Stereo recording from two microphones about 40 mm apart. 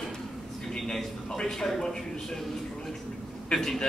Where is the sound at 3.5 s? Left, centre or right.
Centre.